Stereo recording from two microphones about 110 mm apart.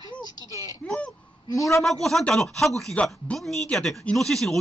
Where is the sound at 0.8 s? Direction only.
10° left (ahead or behind).